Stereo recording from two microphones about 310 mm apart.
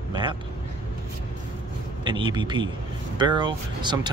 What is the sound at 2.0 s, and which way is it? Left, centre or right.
Speech, centre.